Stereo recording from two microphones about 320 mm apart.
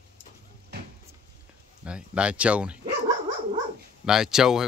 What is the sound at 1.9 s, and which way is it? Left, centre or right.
Speech, centre.